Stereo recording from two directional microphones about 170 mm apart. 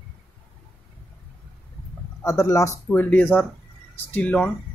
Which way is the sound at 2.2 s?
20° left (ahead or behind).